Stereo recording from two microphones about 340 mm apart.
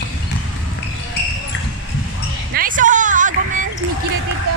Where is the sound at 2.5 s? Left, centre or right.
Right.